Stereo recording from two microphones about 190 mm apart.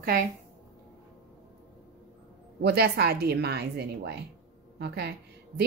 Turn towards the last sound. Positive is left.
turn(degrees=-60)  # may be behind; listen again after turning